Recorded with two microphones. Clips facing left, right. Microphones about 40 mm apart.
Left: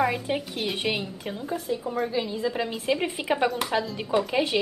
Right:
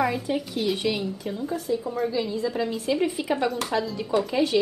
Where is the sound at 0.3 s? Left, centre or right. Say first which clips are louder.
Right 1 dB; left.